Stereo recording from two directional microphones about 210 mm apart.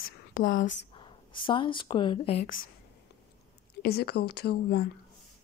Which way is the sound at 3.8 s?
50° left (ahead or behind).